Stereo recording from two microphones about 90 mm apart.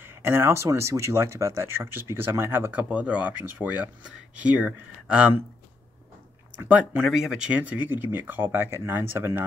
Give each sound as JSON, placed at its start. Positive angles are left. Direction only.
{"t": 0.0, "sound": "speech", "side_deg": -25}
{"t": 2.7, "sound": "speech", "side_deg": -15}
{"t": 7.0, "sound": "speech", "side_deg": -5}